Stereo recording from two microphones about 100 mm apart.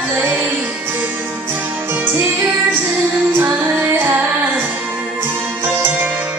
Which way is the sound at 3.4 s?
20° right (ahead or behind).